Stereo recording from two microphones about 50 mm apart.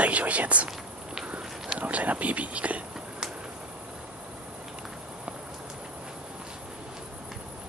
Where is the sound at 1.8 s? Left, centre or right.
Right.